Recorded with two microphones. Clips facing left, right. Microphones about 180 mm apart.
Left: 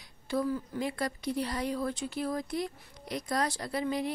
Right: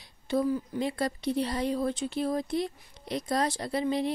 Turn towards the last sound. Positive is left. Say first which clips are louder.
# right 3 dB
turn(degrees=-25)  # may be behind; listen again after turning